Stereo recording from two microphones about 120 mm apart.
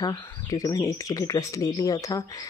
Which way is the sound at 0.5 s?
30° left (ahead or behind).